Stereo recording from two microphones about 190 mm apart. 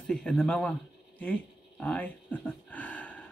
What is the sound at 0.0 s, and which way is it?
Speech, 5° left (ahead or behind).